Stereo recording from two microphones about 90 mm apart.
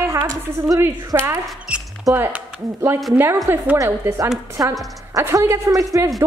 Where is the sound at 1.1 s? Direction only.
35° right (ahead or behind).